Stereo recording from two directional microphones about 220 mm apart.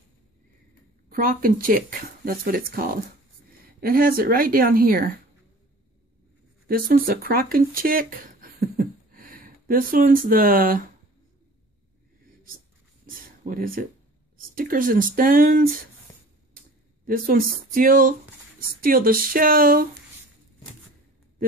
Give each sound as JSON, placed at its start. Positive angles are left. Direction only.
{"t": 1.0, "sound": "speech", "side_deg": -40}
{"t": 6.7, "sound": "speech", "side_deg": -40}
{"t": 13.0, "sound": "a sound", "side_deg": -40}
{"t": 14.5, "sound": "speech", "side_deg": -40}
{"t": 17.0, "sound": "speech", "side_deg": -40}